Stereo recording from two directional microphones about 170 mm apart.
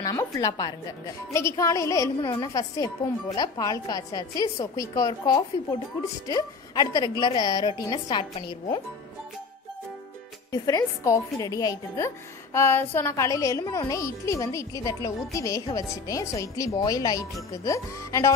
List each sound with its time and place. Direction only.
0.0 s a child's voice: 20° left (ahead or behind)
10.5 s a child's voice: 20° left (ahead or behind)